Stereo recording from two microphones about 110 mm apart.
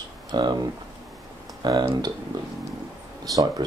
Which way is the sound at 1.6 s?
40° right (ahead or behind).